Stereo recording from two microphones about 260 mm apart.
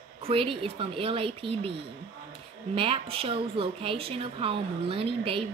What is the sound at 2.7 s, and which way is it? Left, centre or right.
A woman's voice, right.